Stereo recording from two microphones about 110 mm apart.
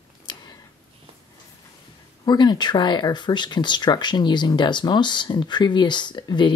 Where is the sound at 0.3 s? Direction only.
40° left (ahead or behind).